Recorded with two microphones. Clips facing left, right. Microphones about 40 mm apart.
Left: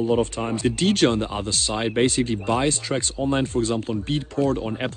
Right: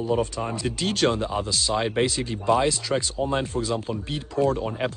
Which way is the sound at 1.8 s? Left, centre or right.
Centre.